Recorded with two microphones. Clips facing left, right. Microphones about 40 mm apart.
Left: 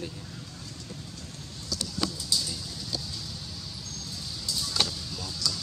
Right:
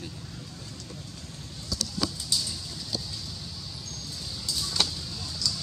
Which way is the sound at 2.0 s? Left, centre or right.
Left.